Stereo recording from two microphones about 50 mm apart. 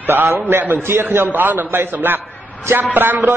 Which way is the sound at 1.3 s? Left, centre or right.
Right.